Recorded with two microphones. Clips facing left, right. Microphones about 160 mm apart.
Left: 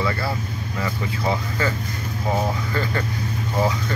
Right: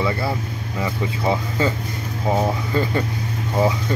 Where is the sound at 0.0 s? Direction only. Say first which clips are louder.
Right 2 dB; 20° right (ahead or behind).